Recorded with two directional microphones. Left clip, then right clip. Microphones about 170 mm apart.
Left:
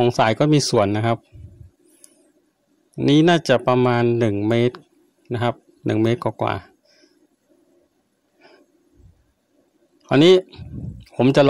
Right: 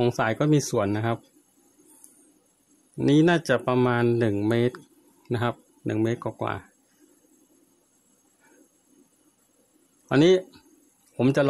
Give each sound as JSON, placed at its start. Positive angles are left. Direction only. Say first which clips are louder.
{"t": 0.1, "sound": "speech", "louder": "left 6 dB", "side_deg": 25}
{"t": 3.1, "sound": "speech", "louder": "left 5 dB", "side_deg": 20}
{"t": 5.9, "sound": "speech", "louder": "left 7 dB", "side_deg": 25}
{"t": 10.0, "sound": "speech", "louder": "left 6 dB", "side_deg": 25}